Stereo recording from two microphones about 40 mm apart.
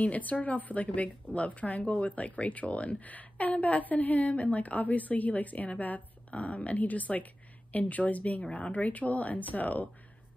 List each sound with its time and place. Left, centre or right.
0.0 s a woman's voice: left
8.4 s a woman's voice: left